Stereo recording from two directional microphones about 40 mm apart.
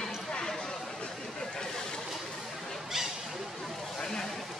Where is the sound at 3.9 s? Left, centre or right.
Centre.